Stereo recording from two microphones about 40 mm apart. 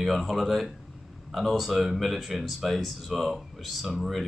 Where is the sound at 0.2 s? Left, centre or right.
Centre.